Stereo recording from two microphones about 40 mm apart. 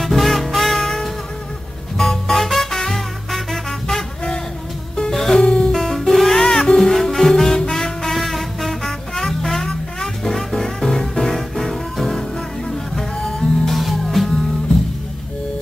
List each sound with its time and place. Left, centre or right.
0.0 s music: centre
5.1 s music: centre
5.4 s music: left
5.7 s music: centre
6.9 s music: centre
13.7 s music: centre